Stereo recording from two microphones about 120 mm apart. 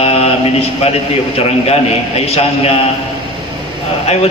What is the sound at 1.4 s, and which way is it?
A man's voice, 60° left (ahead or behind).